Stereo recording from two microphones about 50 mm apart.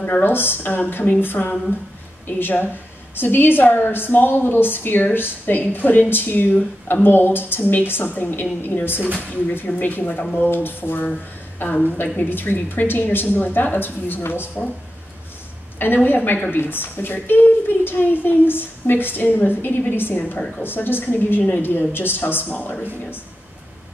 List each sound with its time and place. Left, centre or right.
0.0 s a woman's voice: left
10.5 s a woman's voice: left
15.8 s a woman's voice: left